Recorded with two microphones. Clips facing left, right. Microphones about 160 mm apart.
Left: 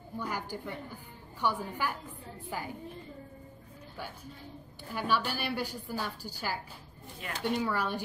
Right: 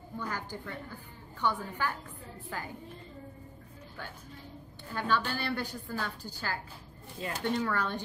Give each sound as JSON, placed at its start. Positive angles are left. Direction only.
{"t": 0.2, "sound": "a woman's voice", "side_deg": 10}
{"t": 4.9, "sound": "a woman's voice", "side_deg": 10}
{"t": 7.2, "sound": "speech", "side_deg": -30}
{"t": 7.5, "sound": "a woman's voice", "side_deg": 10}